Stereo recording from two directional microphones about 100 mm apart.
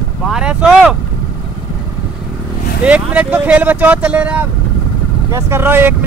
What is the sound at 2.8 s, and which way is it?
Speech, 15° right (ahead or behind).